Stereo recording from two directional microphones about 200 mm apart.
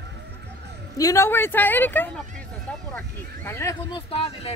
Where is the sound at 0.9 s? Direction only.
15° left (ahead or behind).